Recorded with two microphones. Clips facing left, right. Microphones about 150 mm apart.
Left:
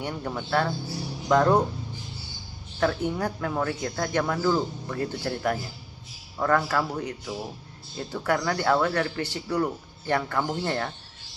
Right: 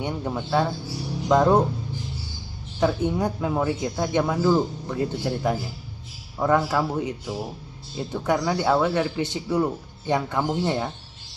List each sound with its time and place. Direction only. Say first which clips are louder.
0.0 s speech: right 3 dB; 15° right (ahead or behind)
2.8 s speech: right 3 dB; 20° right (ahead or behind)